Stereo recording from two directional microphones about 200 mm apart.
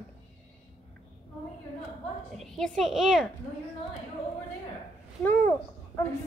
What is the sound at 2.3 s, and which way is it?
Speech, centre (ahead or behind).